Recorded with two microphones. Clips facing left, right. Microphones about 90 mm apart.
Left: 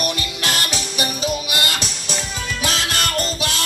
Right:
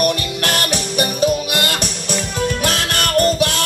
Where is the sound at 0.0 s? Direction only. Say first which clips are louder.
Right 6 dB; 50° right (ahead or behind).